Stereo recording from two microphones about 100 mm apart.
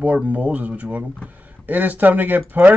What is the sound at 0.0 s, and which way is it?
Speech, 15° right (ahead or behind).